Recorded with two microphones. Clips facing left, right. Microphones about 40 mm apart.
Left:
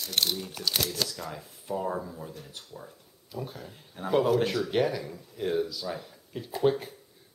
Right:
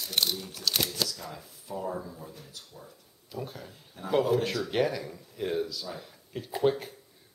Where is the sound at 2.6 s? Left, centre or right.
Left.